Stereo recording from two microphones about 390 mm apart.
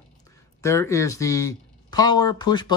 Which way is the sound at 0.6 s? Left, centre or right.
Centre.